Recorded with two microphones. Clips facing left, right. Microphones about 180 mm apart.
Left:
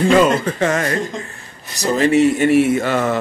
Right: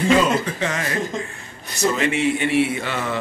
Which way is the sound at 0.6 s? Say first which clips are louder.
Left 7 dB; 50° left (ahead or behind).